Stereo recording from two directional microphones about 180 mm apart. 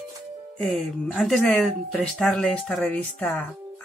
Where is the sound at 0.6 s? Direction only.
Centre (ahead or behind).